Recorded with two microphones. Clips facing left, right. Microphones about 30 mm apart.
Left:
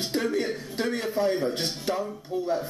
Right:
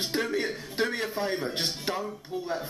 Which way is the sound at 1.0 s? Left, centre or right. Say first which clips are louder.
Left 5 dB; centre.